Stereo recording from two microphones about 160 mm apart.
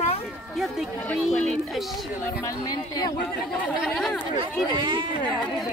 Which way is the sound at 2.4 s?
20° left (ahead or behind).